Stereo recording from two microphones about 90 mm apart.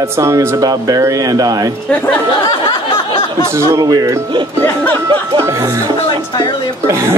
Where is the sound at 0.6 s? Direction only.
45° right (ahead or behind).